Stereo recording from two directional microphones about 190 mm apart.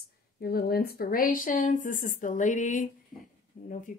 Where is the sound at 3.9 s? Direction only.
45° left (ahead or behind).